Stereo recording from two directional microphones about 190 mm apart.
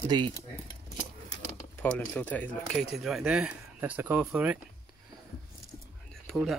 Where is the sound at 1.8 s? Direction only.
10° left (ahead or behind); by 4.6 s 10° right (ahead or behind).